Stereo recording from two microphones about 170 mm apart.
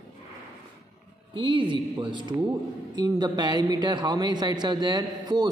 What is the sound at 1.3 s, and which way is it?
A man's voice, 30° right (ahead or behind).